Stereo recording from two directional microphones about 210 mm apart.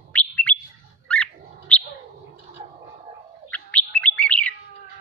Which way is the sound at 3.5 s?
5° left (ahead or behind).